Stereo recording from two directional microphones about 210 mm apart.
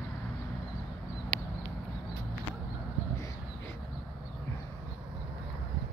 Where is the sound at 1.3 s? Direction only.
35° right (ahead or behind).